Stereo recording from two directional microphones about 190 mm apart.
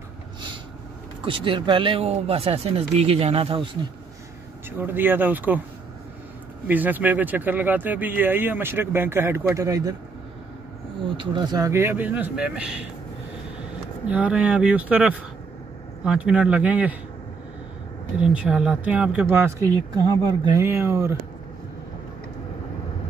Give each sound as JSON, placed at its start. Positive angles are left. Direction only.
{"t": 1.2, "sound": "speech", "side_deg": -25}
{"t": 4.6, "sound": "speech", "side_deg": -10}
{"t": 6.7, "sound": "speech", "side_deg": -10}
{"t": 11.1, "sound": "speech", "side_deg": -25}
{"t": 14.0, "sound": "speech", "side_deg": -5}
{"t": 18.1, "sound": "speech", "side_deg": -5}